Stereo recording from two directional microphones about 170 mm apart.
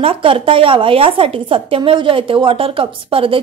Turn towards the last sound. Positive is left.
turn(degrees=-30)  # may be behind; listen again after turning